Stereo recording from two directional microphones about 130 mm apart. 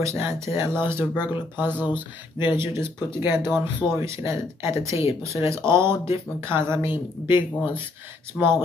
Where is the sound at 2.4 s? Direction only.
15° right (ahead or behind).